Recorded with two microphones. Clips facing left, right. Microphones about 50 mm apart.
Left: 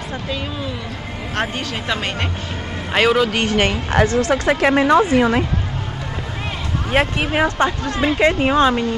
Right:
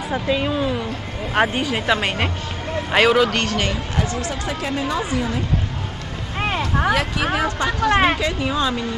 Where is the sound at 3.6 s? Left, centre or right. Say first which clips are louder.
Left 6 dB; left.